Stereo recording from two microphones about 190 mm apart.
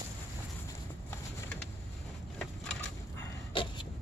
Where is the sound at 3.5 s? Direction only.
25° left (ahead or behind).